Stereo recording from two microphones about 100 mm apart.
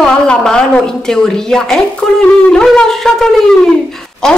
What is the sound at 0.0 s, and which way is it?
A woman's voice, 5° left (ahead or behind).